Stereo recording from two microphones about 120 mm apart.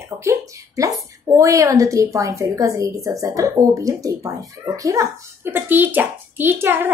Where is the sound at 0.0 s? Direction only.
25° right (ahead or behind).